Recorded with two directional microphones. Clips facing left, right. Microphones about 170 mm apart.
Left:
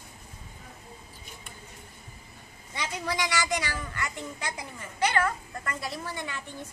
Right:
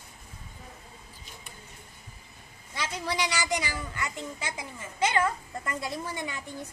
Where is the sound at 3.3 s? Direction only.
10° right (ahead or behind).